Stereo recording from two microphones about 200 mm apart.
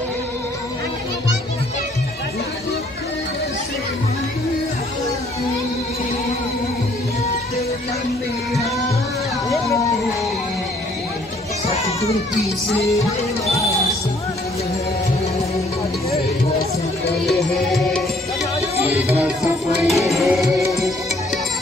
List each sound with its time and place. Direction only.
12.0 s music: 15° left (ahead or behind)
17.3 s music: centre (ahead or behind)